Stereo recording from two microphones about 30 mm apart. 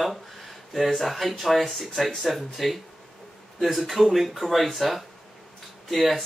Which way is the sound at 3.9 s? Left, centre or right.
Centre.